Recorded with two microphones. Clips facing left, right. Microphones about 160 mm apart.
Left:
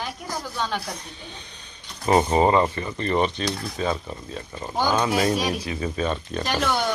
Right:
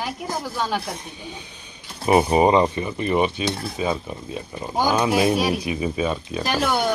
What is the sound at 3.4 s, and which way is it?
Stir, 25° right (ahead or behind).